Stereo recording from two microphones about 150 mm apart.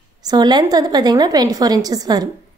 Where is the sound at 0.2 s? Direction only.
25° right (ahead or behind).